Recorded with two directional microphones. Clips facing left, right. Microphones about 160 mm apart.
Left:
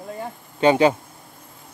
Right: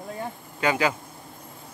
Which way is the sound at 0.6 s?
25° left (ahead or behind).